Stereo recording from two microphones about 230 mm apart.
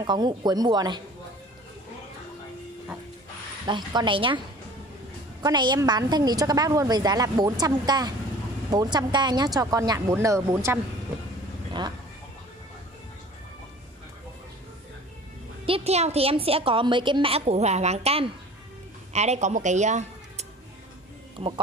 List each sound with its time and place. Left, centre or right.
0.0 s a woman's voice: centre
3.6 s a woman's voice: centre
5.4 s a woman's voice: centre
15.6 s a woman's voice: right